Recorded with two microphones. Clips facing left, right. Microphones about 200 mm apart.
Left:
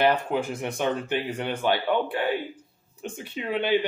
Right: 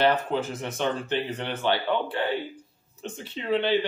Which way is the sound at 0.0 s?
10° left (ahead or behind).